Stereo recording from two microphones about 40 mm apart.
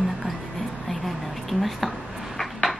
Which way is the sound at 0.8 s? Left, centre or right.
Centre.